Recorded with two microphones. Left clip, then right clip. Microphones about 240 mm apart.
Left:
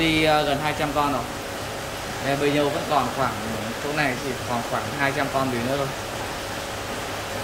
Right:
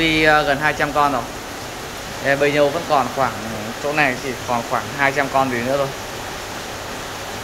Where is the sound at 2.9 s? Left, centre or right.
Centre.